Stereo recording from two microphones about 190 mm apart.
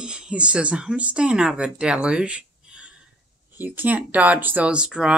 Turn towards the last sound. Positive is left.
turn(degrees=-5)  # may be behind; listen again after turning